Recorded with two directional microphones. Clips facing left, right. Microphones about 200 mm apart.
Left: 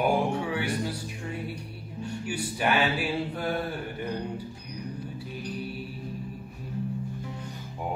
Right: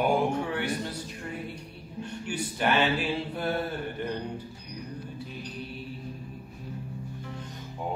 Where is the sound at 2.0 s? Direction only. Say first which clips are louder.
Left 1 dB; 10° left (ahead or behind).